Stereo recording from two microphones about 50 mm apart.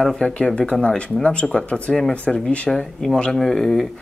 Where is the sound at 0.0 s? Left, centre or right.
Centre.